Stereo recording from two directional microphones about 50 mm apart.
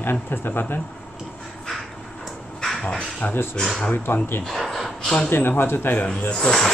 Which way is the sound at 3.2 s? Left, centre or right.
Left.